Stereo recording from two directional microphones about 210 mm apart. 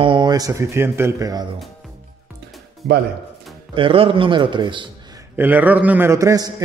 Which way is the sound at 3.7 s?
25° right (ahead or behind).